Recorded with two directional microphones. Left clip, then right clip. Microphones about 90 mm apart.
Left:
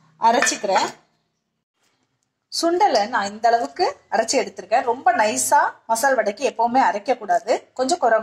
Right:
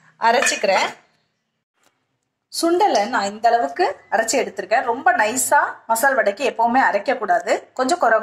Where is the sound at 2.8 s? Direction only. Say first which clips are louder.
Even; 40° right (ahead or behind).